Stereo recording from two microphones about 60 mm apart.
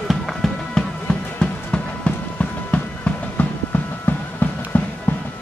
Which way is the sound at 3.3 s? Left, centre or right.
Left.